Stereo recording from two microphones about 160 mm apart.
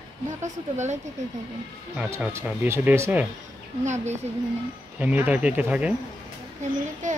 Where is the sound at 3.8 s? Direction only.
45° right (ahead or behind).